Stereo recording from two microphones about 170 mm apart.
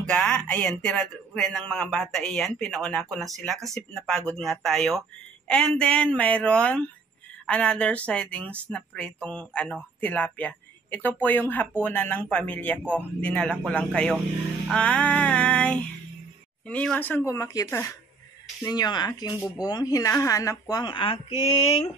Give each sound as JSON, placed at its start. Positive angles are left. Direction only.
{"t": 0.0, "sound": "speech", "side_deg": 5}